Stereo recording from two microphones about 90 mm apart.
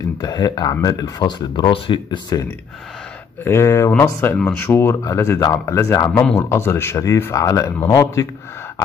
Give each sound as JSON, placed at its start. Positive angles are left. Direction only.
{"t": 0.2, "sound": "speech", "side_deg": 45}
{"t": 1.2, "sound": "speech", "side_deg": 60}
{"t": 3.4, "sound": "speech", "side_deg": 30}